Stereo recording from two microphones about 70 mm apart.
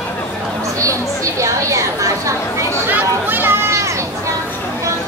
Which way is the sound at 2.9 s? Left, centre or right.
Right.